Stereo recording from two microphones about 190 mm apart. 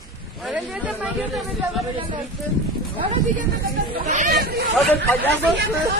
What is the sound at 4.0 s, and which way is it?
Speech, 45° right (ahead or behind).